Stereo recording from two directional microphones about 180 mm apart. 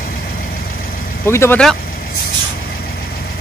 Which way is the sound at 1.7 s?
55° left (ahead or behind).